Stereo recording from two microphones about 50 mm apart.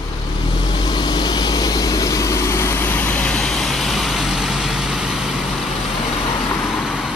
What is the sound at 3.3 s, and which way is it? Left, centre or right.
Vehicle, centre.